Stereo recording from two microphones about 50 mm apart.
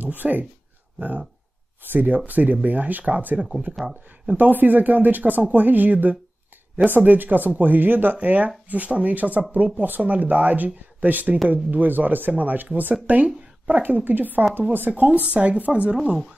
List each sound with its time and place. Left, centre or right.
0.0 s speech: right
3.3 s speech: centre
3.8 s speech: right